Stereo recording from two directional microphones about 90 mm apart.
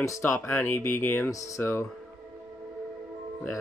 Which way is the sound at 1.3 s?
40° left (ahead or behind).